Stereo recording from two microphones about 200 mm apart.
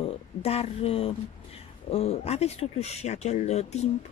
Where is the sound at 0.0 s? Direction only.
30° left (ahead or behind).